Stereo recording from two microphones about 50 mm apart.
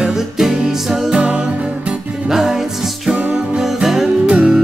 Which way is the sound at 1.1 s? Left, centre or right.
Right.